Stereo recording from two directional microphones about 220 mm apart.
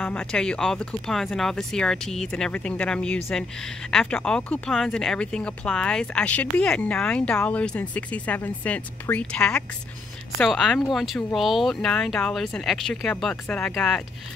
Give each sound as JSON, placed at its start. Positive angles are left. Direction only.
{"t": 0.0, "sound": "speech", "side_deg": 5}